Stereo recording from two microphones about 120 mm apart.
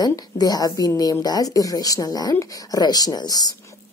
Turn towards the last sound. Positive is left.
turn(degrees=35)  # may be behind; listen again after turning